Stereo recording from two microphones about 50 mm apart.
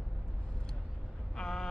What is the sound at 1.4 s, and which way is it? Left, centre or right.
Speech, centre.